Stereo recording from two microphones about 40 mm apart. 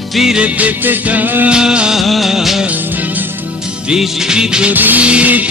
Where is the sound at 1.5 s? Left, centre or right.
Right.